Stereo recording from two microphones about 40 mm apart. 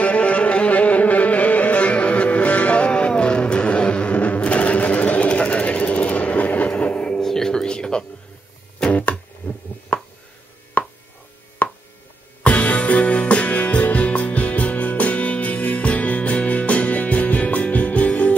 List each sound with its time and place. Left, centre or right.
0.0 s music: left
7.2 s music: centre
9.4 s heart sounds: left
9.9 s a sound: left
10.8 s chopping: left
12.4 s music: left